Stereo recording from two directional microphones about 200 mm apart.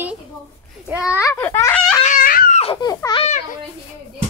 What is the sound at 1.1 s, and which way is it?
Wail, 10° left (ahead or behind).